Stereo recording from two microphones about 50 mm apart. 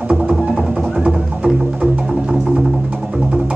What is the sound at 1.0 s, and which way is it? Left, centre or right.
Music, right.